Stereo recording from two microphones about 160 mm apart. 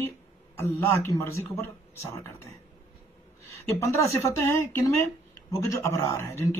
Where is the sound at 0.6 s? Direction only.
15° left (ahead or behind).